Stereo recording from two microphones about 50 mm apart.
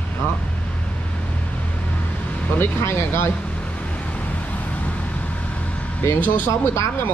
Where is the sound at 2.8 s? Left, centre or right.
Left.